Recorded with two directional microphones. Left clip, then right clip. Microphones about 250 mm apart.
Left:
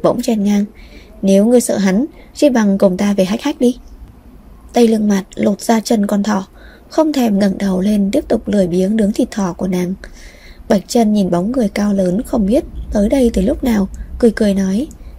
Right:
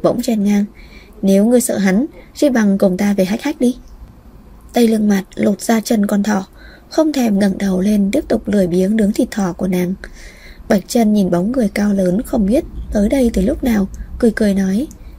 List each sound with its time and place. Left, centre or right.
0.0 s a woman's voice: centre